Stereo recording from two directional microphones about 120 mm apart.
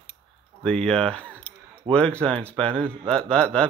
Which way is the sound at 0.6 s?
5° left (ahead or behind).